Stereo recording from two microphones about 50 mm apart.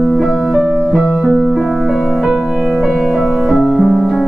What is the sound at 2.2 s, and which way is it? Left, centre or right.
Music, centre.